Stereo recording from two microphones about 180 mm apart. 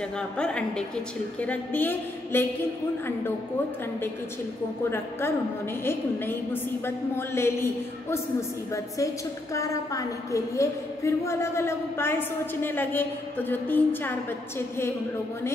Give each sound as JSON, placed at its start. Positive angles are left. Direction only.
{"t": 0.4, "sound": "a woman's voice", "side_deg": 5}
{"t": 5.9, "sound": "a woman's voice", "side_deg": 10}